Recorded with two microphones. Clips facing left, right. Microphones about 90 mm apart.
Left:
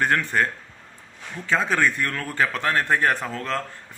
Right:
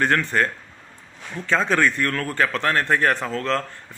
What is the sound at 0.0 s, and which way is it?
A man's voice, 10° left (ahead or behind).